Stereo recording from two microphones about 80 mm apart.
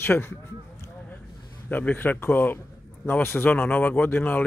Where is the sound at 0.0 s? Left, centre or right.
Left.